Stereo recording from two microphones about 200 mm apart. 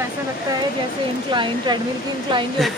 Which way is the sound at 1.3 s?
25° right (ahead or behind).